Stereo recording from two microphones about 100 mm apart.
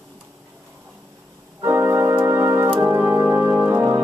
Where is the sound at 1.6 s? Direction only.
30° right (ahead or behind).